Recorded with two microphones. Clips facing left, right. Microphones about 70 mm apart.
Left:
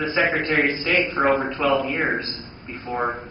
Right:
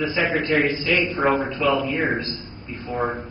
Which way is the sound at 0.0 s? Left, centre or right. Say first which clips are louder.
Left 1 dB; left.